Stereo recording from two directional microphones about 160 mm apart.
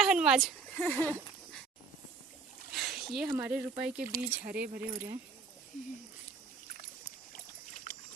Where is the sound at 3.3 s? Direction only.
10° right (ahead or behind).